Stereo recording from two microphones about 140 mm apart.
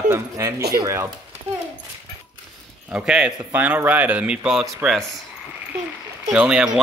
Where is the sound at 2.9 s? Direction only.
5° right (ahead or behind).